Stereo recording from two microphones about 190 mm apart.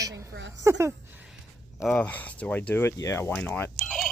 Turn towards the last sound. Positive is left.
turn(degrees=10)  # may be behind; listen again after turning